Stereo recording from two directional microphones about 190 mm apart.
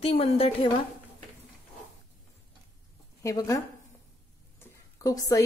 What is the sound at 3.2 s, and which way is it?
A woman's voice, 15° left (ahead or behind).